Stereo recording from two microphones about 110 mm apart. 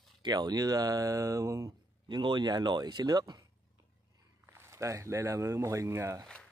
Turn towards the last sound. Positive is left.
turn(degrees=-25)  # may be behind; listen again after turning